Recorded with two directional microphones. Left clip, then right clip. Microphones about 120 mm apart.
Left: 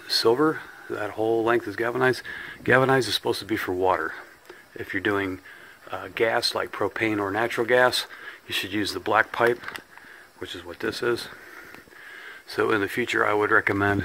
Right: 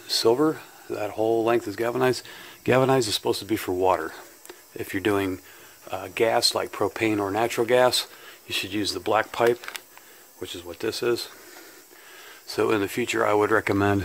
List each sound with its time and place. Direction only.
0.1 s speech: 20° right (ahead or behind)
4.7 s speech: 45° right (ahead or behind); by 11.3 s 20° right (ahead or behind)
12.3 s speech: 35° right (ahead or behind)
13.3 s speech: 40° right (ahead or behind)